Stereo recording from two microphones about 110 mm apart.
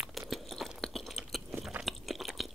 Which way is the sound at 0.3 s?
Centre (ahead or behind).